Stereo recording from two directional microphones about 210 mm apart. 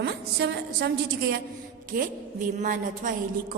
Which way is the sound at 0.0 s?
50° right (ahead or behind).